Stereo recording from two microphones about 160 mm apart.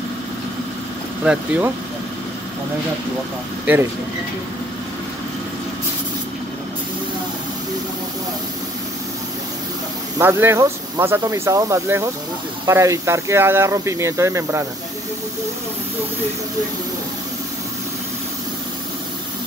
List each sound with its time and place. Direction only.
1.2 s speech: 10° right (ahead or behind)
10.1 s speech: 15° right (ahead or behind)